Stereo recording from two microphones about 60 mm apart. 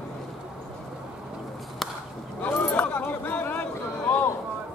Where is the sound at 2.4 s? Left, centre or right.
Left.